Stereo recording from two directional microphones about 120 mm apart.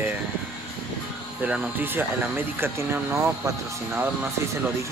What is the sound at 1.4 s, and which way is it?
Speech, 15° right (ahead or behind).